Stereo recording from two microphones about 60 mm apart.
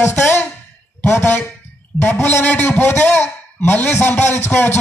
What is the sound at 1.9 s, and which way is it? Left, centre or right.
Speech, centre.